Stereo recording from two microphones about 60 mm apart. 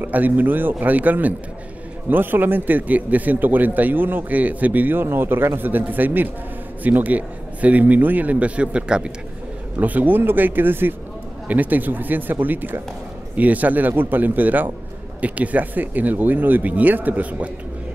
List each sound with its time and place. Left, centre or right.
0.0 s a man's voice: right; by 9.1 s centre
9.8 s a man's voice: right